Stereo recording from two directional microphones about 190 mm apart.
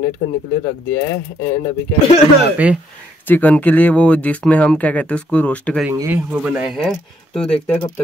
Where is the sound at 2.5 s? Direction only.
5° right (ahead or behind).